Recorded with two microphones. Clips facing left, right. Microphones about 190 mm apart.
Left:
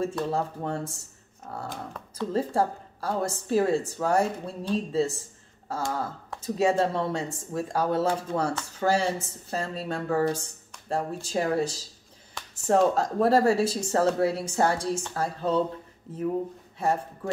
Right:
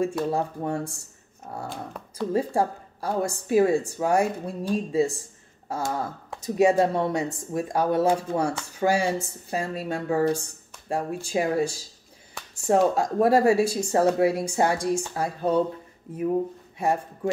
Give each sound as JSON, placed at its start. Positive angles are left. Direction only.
{"t": 0.0, "sound": "speech", "side_deg": -15}